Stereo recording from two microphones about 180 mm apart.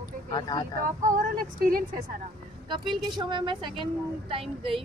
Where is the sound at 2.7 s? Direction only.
25° right (ahead or behind).